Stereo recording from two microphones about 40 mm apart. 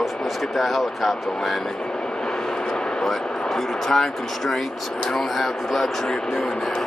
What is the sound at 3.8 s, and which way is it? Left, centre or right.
Speech, centre.